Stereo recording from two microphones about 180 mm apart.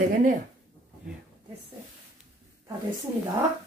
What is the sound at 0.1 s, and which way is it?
Speech, 45° right (ahead or behind).